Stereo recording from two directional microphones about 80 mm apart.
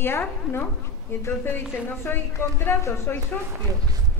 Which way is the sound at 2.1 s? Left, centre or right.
Left.